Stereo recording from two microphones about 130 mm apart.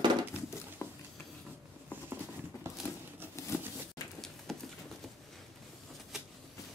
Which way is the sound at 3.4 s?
20° left (ahead or behind).